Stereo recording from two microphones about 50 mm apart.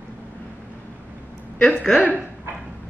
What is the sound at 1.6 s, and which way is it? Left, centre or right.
Speech, centre.